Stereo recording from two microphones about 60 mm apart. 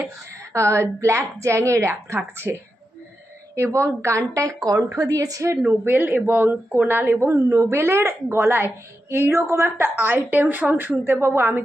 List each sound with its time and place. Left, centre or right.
0.0 s a woman's voice: right
3.5 s a woman's voice: right
4.3 s speech: right
4.9 s a woman's voice: right
5.9 s a woman's voice: right
7.5 s a woman's voice: right